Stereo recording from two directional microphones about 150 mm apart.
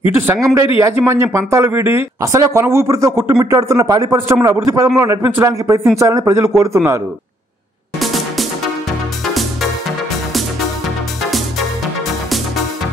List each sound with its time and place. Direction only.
0.3 s a man's voice: 15° right (ahead or behind)
8.0 s music: centre (ahead or behind)